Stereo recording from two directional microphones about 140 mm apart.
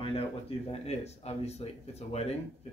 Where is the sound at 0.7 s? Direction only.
50° left (ahead or behind).